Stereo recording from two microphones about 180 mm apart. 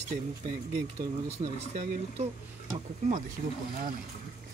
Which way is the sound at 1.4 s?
35° right (ahead or behind).